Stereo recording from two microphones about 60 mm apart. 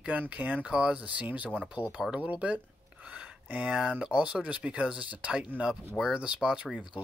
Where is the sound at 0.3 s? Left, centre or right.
Right.